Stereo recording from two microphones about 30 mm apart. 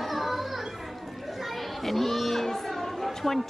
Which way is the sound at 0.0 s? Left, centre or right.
Centre.